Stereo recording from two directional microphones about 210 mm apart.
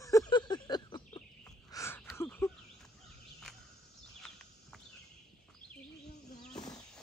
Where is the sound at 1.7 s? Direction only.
10° left (ahead or behind).